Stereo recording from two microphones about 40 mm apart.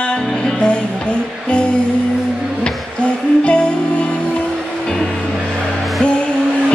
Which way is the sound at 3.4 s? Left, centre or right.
Left.